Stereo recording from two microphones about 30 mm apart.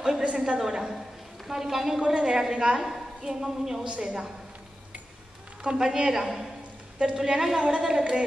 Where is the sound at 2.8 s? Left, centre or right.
Centre.